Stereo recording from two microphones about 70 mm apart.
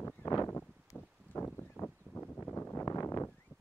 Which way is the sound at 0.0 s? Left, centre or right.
Left.